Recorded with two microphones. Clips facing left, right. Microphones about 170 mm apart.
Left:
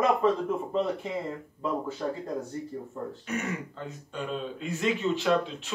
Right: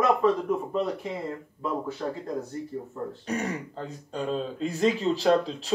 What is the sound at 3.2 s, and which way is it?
Speech, 35° right (ahead or behind).